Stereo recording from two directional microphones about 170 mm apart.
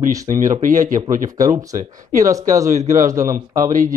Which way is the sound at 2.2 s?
20° right (ahead or behind).